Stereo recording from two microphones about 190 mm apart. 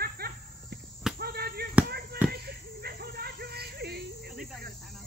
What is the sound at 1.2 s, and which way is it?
Basketball bounce, 55° right (ahead or behind).